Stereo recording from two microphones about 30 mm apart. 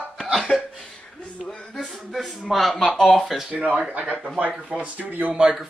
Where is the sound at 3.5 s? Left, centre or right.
Right.